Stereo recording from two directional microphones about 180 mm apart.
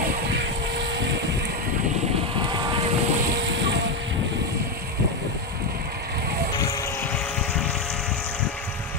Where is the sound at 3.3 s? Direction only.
75° right (ahead or behind).